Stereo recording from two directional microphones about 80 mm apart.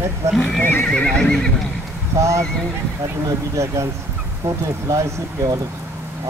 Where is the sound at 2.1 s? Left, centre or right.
Right.